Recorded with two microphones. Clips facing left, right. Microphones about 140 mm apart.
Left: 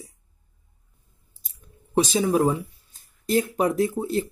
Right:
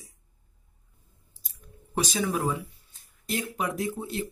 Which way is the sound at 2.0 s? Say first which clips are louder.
Left 7 dB; 30° left (ahead or behind).